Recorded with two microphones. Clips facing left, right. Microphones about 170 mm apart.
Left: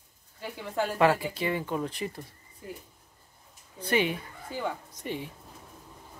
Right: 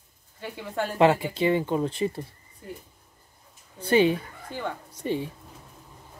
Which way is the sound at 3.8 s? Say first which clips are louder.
Right 7 dB; 30° right (ahead or behind).